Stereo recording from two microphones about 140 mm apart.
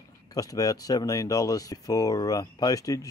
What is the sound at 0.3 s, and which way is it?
Speech, 25° left (ahead or behind).